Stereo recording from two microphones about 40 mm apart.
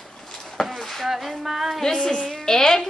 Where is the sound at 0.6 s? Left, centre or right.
Centre.